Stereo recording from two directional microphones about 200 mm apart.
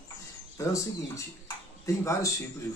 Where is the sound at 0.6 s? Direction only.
15° left (ahead or behind).